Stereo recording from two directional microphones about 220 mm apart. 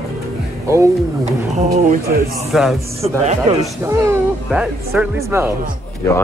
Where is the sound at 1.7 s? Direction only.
40° right (ahead or behind).